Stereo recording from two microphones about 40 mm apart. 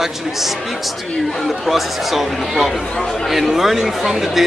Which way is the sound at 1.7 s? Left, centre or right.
Centre.